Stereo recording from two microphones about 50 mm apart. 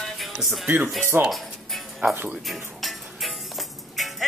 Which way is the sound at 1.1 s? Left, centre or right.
Right.